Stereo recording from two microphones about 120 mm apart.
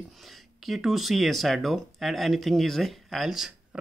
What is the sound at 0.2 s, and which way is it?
Speech, centre (ahead or behind).